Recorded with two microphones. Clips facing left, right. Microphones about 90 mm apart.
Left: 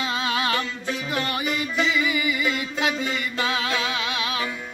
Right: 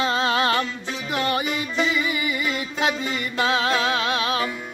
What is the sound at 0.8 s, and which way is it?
Music, 25° right (ahead or behind).